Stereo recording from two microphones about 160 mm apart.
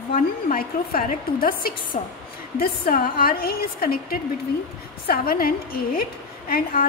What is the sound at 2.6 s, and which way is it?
A woman's voice, 65° left (ahead or behind).